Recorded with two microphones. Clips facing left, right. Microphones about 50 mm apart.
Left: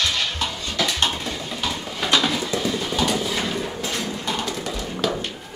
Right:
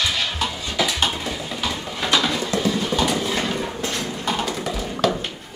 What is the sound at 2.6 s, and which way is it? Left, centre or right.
Clip-clop, centre.